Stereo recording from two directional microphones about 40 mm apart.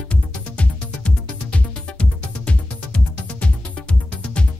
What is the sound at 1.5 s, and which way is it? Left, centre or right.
Music, left.